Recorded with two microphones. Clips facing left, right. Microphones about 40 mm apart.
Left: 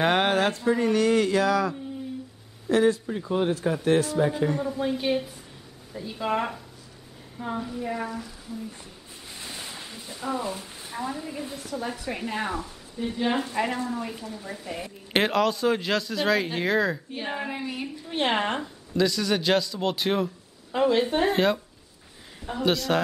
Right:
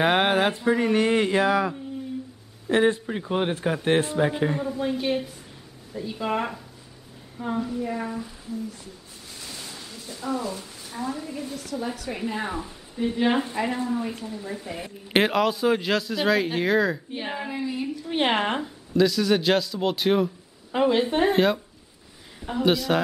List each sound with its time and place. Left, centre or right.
0.0 s speech: centre
2.7 s a man's voice: right
4.6 s a man's voice: centre
9.3 s a sound: left
11.9 s a woman's voice: centre
12.5 s a woman's voice: right
17.5 s a woman's voice: centre
18.1 s a man's voice: centre
20.7 s a woman's voice: centre